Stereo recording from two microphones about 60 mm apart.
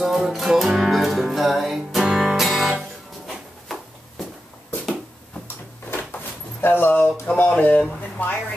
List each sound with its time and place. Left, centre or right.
0.0 s music: centre
3.3 s a sound: centre
5.9 s drawer open or close: left
7.4 s speech: left